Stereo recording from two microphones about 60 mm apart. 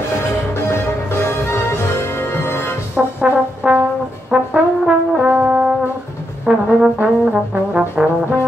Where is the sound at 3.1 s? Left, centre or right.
Right.